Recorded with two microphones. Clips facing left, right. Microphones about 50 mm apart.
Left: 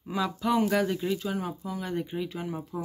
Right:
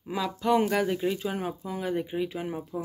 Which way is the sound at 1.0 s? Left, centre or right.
Centre.